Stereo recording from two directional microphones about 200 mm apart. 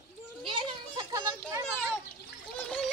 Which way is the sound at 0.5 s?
20° right (ahead or behind).